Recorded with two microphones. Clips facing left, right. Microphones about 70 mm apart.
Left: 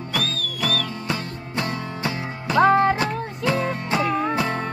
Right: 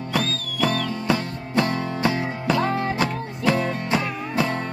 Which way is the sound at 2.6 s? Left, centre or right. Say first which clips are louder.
Left 8 dB; left.